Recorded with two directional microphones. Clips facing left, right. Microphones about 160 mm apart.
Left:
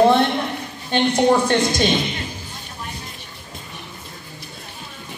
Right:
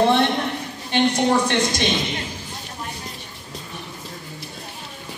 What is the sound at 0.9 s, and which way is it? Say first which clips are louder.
Speech: left 2 dB; 35° left (ahead or behind).